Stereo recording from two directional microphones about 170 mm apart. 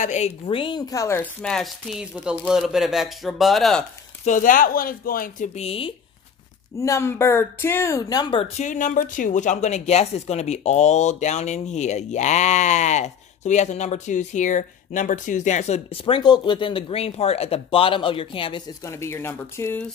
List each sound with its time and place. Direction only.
0.0 s speech: 40° left (ahead or behind); by 3.8 s centre (ahead or behind)
4.2 s speech: 50° left (ahead or behind)
5.6 s speech: 35° left (ahead or behind)
6.8 s speech: 15° left (ahead or behind)
8.5 s a woman's voice: 50° left (ahead or behind); by 18.6 s 30° left (ahead or behind)
18.9 s speech: 15° left (ahead or behind)